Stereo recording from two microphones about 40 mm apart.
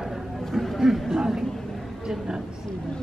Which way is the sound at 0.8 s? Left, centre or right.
Centre.